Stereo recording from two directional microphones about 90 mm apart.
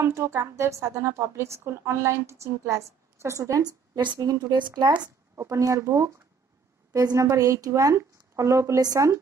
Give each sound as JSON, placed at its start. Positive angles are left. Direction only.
{"t": 0.0, "sound": "a woman's voice", "side_deg": -30}
{"t": 3.9, "sound": "a woman's voice", "side_deg": -60}
{"t": 4.2, "sound": "a woman's voice", "side_deg": -45}
{"t": 5.3, "sound": "a woman's voice", "side_deg": -35}